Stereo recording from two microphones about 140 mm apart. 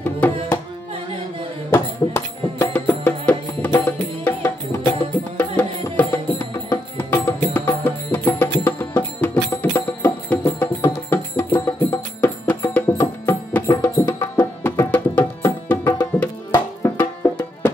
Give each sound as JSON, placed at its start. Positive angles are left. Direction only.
{"t": 0.2, "sound": "carnatic music", "side_deg": 10}
{"t": 1.7, "sound": "music", "side_deg": 20}